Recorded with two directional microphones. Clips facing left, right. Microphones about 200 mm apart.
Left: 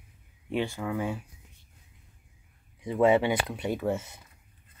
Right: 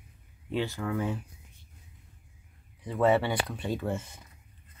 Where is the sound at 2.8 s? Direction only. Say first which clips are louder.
Left 2 dB; 15° left (ahead or behind).